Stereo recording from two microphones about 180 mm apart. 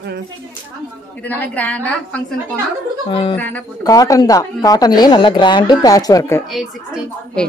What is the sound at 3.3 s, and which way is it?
Speech, 10° left (ahead or behind).